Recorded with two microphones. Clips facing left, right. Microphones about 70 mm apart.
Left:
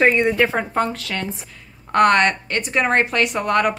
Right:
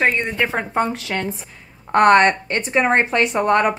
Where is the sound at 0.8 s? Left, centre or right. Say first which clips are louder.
Right 1 dB; right.